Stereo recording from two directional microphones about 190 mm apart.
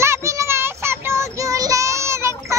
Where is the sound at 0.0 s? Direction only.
15° right (ahead or behind).